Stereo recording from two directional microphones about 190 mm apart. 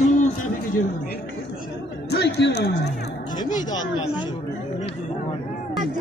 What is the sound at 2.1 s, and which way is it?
Speech, 60° left (ahead or behind).